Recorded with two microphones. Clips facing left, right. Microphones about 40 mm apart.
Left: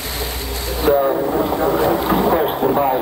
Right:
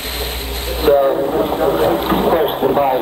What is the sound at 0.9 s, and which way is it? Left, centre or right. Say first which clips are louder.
Speech: right 3 dB; right.